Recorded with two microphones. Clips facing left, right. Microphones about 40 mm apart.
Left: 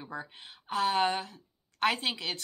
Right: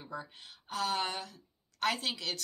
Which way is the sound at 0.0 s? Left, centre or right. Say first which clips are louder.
Left 2 dB; left.